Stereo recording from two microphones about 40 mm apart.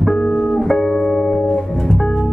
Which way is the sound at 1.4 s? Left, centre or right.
Centre.